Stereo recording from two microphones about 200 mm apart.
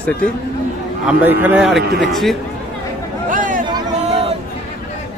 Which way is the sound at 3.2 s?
40° right (ahead or behind).